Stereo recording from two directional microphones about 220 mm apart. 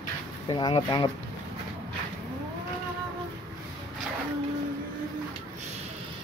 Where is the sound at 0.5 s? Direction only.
20° left (ahead or behind).